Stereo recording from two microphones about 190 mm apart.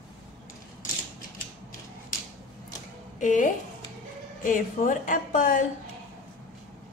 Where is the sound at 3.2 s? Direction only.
40° left (ahead or behind).